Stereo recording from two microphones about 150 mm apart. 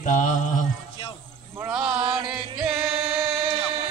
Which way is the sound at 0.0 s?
60° left (ahead or behind).